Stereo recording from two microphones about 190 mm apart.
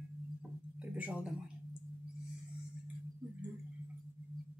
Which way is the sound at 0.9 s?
5° right (ahead or behind).